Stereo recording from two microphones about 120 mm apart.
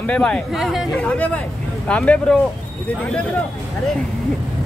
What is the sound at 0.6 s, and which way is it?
Speech, centre (ahead or behind).